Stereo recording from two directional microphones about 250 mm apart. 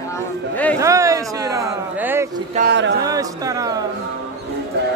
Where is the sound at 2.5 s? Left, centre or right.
Right.